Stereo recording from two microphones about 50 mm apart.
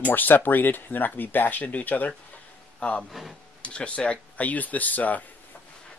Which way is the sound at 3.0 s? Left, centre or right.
Centre.